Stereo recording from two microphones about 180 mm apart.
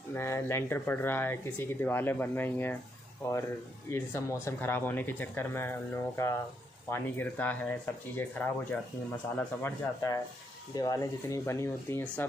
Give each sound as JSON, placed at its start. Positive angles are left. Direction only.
{"t": 0.1, "sound": "speech", "side_deg": 15}
{"t": 3.9, "sound": "speech", "side_deg": 15}